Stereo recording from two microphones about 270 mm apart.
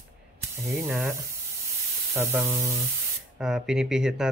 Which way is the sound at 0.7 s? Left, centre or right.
Centre.